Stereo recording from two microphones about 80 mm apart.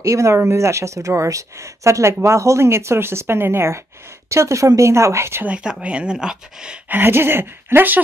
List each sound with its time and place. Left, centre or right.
0.0 s speech: right
5.4 s speech: centre
6.9 s speech: right